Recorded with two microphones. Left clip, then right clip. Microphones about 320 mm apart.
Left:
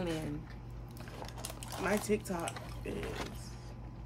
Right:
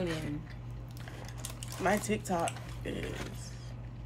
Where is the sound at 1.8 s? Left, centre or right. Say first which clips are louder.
Right 2 dB; centre.